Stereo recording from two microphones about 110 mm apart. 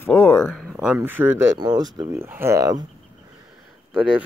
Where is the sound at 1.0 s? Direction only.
15° right (ahead or behind).